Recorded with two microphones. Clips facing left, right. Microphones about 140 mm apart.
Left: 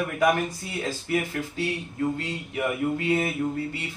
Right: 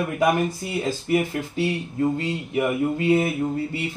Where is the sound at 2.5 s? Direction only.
25° right (ahead or behind).